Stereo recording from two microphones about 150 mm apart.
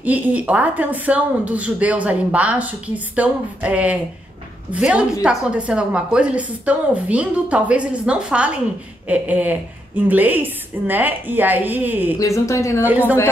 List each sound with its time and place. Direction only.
0.0 s a woman's voice: 10° right (ahead or behind)
12.2 s speech: 20° left (ahead or behind)
12.8 s a woman's voice: 10° right (ahead or behind)